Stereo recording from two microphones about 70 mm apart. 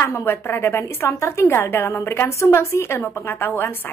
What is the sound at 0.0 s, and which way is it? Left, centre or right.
A woman's voice, left.